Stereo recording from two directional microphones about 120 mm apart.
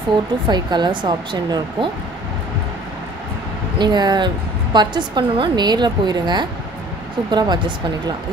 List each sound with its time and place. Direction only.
0.5 s a woman's voice: 35° right (ahead or behind)
3.7 s a woman's voice: 35° right (ahead or behind)